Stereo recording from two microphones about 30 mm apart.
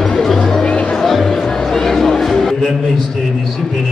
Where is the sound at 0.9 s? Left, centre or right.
Centre.